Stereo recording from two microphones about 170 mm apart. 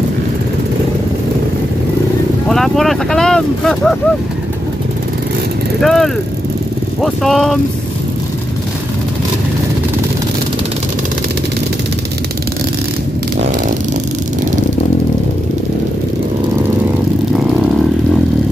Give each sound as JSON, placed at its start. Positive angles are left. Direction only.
{"t": 2.5, "sound": "speech", "side_deg": 0}
{"t": 5.8, "sound": "speech", "side_deg": 0}